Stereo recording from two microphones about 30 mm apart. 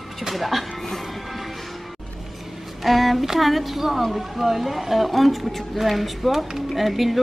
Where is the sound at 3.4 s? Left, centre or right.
Centre.